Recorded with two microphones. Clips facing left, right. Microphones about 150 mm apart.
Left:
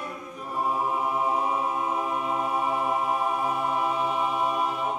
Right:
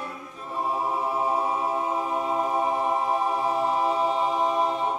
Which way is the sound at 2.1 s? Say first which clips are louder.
Right 2 dB; 30° right (ahead or behind).